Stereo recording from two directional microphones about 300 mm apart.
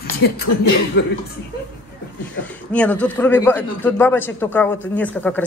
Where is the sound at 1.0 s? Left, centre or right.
Left.